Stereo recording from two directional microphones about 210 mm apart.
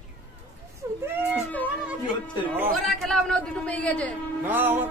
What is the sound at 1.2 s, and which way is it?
Speech, 10° left (ahead or behind).